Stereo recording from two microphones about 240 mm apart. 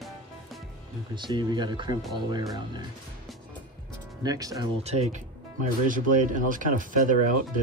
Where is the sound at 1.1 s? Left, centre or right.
Centre.